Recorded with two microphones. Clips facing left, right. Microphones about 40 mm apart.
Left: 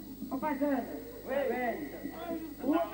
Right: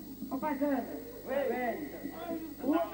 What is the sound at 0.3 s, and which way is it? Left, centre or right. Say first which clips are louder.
A man's voice: even; centre.